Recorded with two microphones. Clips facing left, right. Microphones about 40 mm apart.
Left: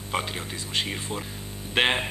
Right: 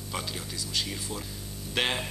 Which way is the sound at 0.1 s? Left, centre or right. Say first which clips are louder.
Left 6 dB; left.